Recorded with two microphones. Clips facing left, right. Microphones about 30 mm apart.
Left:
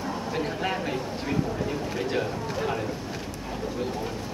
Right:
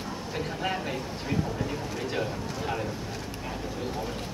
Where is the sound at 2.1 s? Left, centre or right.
Centre.